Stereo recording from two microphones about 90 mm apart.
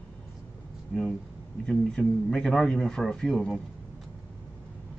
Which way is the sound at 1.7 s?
10° left (ahead or behind).